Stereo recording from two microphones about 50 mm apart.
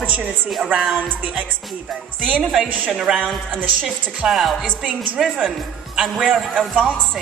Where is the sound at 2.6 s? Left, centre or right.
Right.